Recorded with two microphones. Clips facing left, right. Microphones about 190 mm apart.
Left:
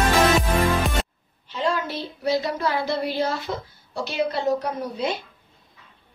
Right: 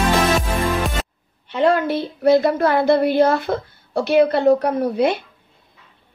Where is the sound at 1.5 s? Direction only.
60° right (ahead or behind).